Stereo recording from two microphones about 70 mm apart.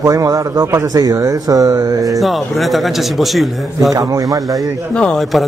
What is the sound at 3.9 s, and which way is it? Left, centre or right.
Speech, right.